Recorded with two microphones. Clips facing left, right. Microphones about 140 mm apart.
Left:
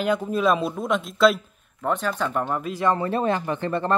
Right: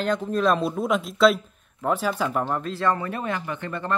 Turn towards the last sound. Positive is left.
turn(degrees=35)  # may be behind; listen again after turning